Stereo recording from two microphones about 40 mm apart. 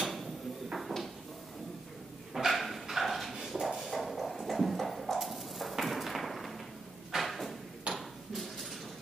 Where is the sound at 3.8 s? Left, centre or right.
Centre.